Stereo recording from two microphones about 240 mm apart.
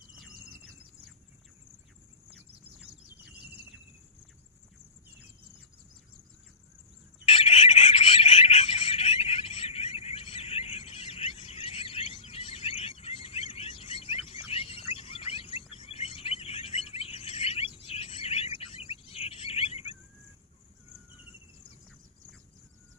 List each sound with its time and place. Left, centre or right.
0.3 s squeal: right
7.2 s a sound: left
17.7 s cricket: left